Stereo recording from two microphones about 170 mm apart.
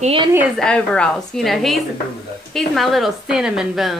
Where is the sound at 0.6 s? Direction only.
5° left (ahead or behind).